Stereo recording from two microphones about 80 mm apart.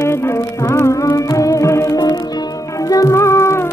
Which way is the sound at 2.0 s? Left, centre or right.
Left.